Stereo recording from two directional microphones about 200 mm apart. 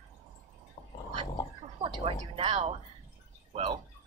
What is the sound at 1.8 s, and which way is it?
A woman's voice, 30° right (ahead or behind).